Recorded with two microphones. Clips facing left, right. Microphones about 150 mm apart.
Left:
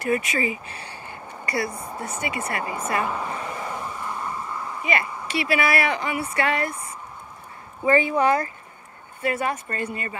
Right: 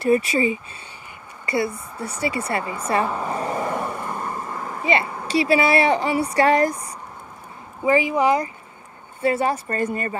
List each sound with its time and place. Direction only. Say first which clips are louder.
0.0 s speech: right 5 dB; 30° right (ahead or behind)
1.4 s a sound: right 4 dB; 25° right (ahead or behind)
2.0 s speech: right 5 dB; 35° right (ahead or behind)
3.7 s vehicle: right 5 dB; 60° right (ahead or behind)
4.8 s speech: right 5 dB; 30° right (ahead or behind)
7.8 s speech: right 1 dB; 10° right (ahead or behind)
9.2 s speech: right 5 dB; 30° right (ahead or behind)